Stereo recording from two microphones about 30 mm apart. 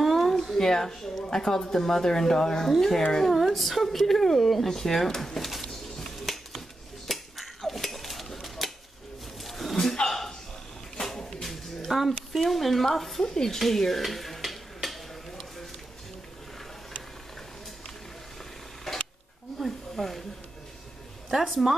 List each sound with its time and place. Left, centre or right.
0.0 s a sound: centre
0.6 s a woman's voice: centre
2.6 s a woman's voice: centre
3.0 s speech: centre
3.3 s a woman's voice: centre
5.6 s finger snapping: centre
7.1 s cutlery: centre
9.4 s a sound: centre
12.4 s speech: centre
13.2 s a woman's voice: centre
13.6 s stir: centre
18.9 s a sound: centre
19.6 s snake: centre
21.3 s speech: centre